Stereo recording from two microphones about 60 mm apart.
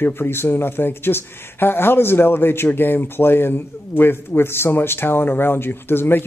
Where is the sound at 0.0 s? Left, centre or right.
Left.